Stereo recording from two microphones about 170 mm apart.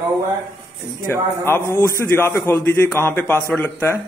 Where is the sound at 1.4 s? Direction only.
15° left (ahead or behind).